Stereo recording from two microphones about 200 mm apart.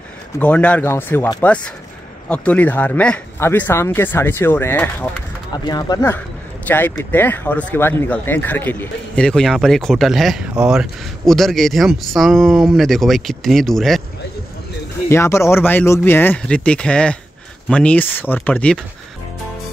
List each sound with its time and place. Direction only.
0.4 s speech: 5° left (ahead or behind)
5.7 s speech: 20° left (ahead or behind); by 14.0 s centre (ahead or behind)
15.0 s speech: 15° left (ahead or behind)